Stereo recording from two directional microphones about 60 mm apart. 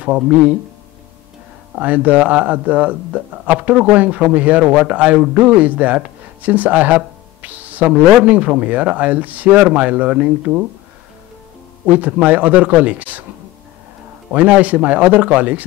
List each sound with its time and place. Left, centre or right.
0.0 s speech: right
1.8 s speech: right
11.8 s speech: right
14.3 s speech: right